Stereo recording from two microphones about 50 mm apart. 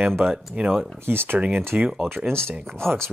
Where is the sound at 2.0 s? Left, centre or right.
Right.